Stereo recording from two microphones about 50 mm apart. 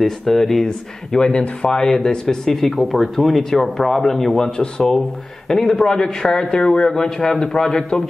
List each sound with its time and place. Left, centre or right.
0.0 s speech: centre
0.7 s a man's voice: centre